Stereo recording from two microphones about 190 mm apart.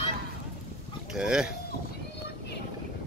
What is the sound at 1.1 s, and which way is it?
Speech, 5° right (ahead or behind).